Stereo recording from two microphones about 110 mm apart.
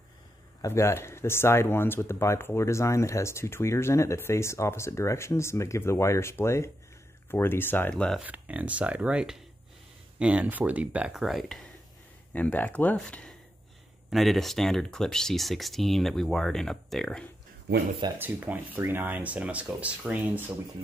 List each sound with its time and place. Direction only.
0.6 s speech: 25° left (ahead or behind)
7.9 s speech: 5° left (ahead or behind)
8.2 s speech: 10° right (ahead or behind)
12.3 s speech: 15° left (ahead or behind)
18.2 s speech: 15° right (ahead or behind)